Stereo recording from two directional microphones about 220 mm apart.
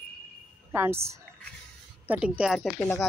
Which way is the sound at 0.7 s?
10° right (ahead or behind).